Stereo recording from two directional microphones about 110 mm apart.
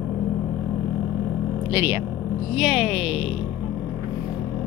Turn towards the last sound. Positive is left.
turn(degrees=-5)  # may be behind; listen again after turning